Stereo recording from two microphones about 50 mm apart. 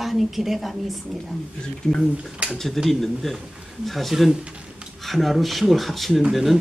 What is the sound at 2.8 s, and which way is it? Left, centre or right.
A woman's voice, centre.